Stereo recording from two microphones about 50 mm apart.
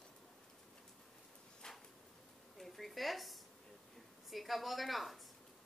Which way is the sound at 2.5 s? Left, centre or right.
Centre.